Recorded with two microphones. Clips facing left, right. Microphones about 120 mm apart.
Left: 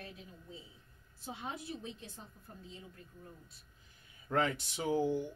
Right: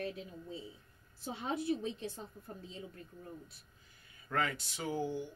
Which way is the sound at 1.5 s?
75° right (ahead or behind).